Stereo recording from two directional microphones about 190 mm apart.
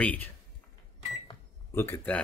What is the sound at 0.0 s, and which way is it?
Speech, 10° left (ahead or behind).